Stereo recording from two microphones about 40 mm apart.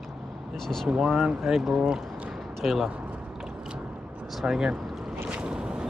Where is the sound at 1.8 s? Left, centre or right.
Centre.